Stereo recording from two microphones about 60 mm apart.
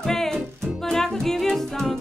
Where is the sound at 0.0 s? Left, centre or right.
Centre.